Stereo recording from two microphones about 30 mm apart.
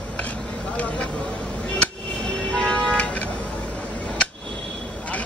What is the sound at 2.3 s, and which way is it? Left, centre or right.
Vehicle, left.